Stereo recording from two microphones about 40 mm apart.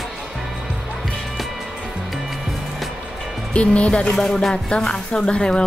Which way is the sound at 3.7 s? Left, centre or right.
Left.